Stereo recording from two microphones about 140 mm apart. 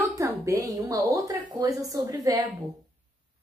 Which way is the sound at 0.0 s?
25° right (ahead or behind).